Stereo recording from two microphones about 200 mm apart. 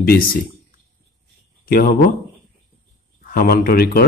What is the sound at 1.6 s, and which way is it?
Speech, 50° left (ahead or behind).